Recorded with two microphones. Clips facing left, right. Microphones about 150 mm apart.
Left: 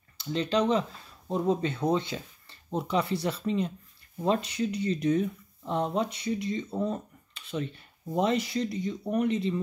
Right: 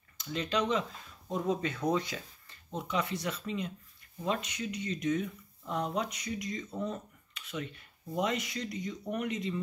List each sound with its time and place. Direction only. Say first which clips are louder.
0.2 s speech: left 5 dB; 30° left (ahead or behind)